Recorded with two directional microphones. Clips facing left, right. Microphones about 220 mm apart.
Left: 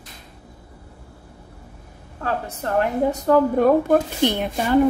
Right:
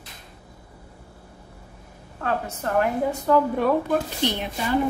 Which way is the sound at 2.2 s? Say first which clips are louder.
Left 1 dB; 35° left (ahead or behind).